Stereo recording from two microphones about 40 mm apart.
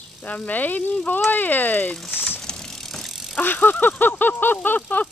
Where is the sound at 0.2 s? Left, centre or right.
Left.